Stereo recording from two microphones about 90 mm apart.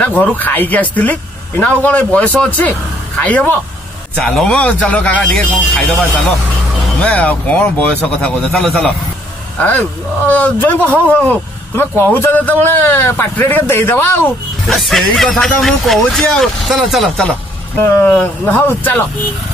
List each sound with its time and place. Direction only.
0.0 s a man's voice: 20° left (ahead or behind)
7.0 s speech: 15° left (ahead or behind)
10.2 s a man's voice: 20° left (ahead or behind)
14.7 s speech: centre (ahead or behind)
17.7 s a man's voice: 25° left (ahead or behind)